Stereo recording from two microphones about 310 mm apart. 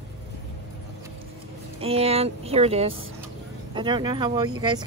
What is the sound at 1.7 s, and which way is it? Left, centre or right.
Speech, centre.